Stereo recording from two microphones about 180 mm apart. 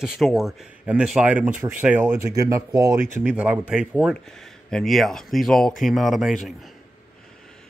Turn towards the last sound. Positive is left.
turn(degrees=0)  # may be behind; listen again after turning